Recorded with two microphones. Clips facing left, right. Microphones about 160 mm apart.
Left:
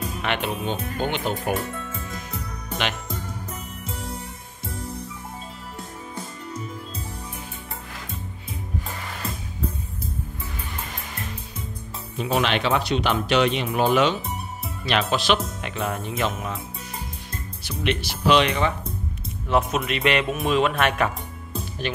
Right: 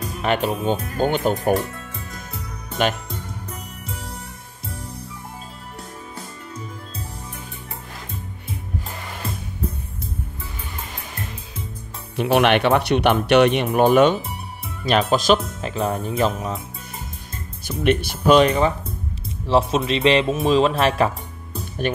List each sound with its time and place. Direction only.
0.2 s speech: 40° right (ahead or behind)
12.2 s speech: 65° right (ahead or behind); by 16.5 s 35° right (ahead or behind)
17.6 s speech: 50° right (ahead or behind)
19.4 s speech: 30° right (ahead or behind)
21.8 s speech: 50° right (ahead or behind)